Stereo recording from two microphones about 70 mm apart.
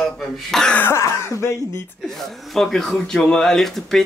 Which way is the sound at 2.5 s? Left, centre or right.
Centre.